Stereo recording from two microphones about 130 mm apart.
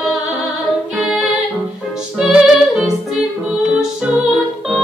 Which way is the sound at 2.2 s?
5° right (ahead or behind).